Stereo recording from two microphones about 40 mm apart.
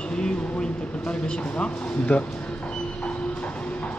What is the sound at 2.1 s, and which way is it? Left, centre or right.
Speech, left.